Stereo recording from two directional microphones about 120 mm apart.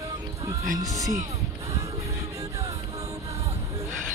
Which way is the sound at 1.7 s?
25° right (ahead or behind).